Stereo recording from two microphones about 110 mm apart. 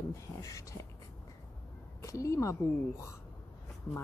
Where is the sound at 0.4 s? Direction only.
30° left (ahead or behind).